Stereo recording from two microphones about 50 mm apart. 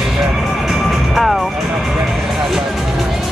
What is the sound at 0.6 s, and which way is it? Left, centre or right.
Vehicle, centre.